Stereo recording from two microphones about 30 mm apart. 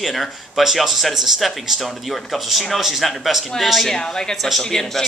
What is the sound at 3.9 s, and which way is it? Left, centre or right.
A woman's voice, left.